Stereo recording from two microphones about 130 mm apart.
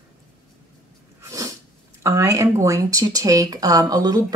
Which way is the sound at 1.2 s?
25° right (ahead or behind).